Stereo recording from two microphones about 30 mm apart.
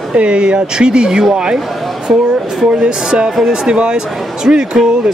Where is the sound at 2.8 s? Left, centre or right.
Right.